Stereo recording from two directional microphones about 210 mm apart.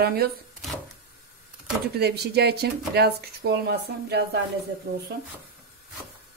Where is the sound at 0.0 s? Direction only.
50° right (ahead or behind).